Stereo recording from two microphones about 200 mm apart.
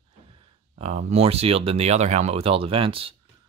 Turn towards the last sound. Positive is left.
turn(degrees=-25)  # may be behind; listen again after turning